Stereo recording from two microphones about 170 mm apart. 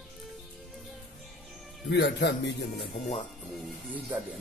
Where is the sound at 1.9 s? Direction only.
90° left.